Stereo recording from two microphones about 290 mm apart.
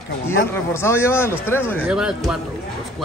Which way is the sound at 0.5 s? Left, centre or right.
Centre.